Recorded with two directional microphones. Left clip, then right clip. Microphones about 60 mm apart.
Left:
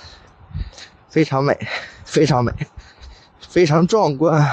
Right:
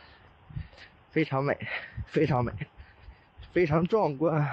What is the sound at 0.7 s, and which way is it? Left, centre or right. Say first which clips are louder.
Speech: left 11 dB; left.